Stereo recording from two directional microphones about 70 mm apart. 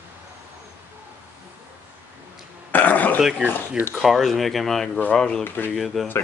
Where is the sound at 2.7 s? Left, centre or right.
Left.